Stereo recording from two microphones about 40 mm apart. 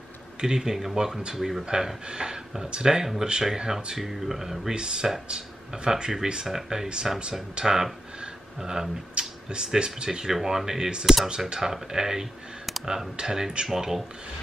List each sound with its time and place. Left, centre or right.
0.6 s speech: centre
4.7 s speech: right
9.5 s speech: right